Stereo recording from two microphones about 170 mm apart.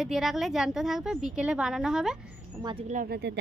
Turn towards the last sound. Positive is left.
turn(degrees=-70)  # may be behind; listen again after turning